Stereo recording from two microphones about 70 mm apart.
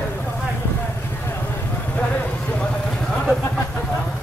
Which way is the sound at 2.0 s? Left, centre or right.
Centre.